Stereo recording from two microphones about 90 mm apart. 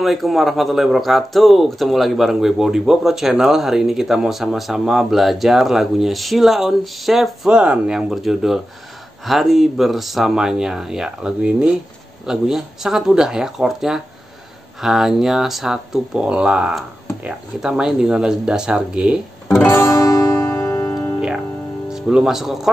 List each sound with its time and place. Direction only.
0.0 s speech: centre (ahead or behind)
19.6 s music: 30° left (ahead or behind)
21.8 s speech: 5° right (ahead or behind)